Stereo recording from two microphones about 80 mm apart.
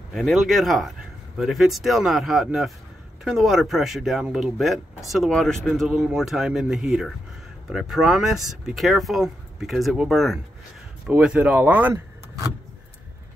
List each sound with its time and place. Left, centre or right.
0.1 s speech: centre
11.1 s speech: centre